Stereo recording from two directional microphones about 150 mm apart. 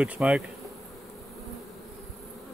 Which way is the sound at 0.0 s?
10° right (ahead or behind).